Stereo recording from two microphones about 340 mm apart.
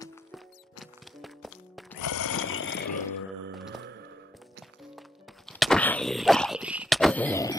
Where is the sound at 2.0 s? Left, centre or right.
Left.